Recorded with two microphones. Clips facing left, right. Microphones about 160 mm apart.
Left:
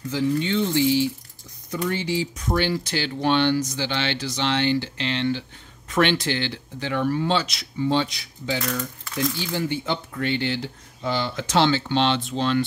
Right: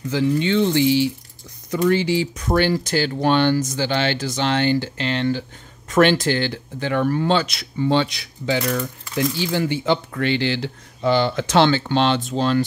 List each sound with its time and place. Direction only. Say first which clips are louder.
0.1 s speech: right 4 dB; 80° right
1.7 s speech: right 7 dB; 90° right; by 8.5 s 75° right (ahead or behind)
9.5 s speech: right 5 dB; 85° right; by 12.6 s 40° right (ahead or behind)